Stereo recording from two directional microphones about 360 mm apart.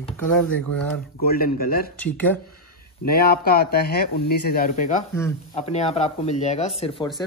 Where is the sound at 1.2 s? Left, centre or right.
Left.